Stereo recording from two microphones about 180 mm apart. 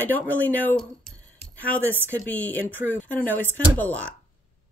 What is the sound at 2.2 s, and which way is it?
A woman's voice, 10° left (ahead or behind).